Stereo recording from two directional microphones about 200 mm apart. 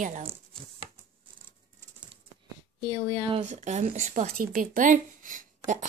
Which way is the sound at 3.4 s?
35° right (ahead or behind).